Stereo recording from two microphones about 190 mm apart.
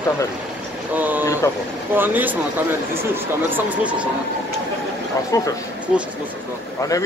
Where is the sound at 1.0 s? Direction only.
10° right (ahead or behind).